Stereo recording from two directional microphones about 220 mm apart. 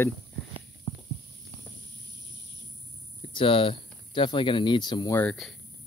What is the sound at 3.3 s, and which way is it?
Speech, 25° left (ahead or behind).